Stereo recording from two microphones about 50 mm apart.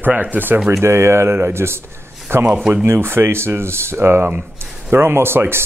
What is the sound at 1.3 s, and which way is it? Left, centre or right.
A man's voice, right.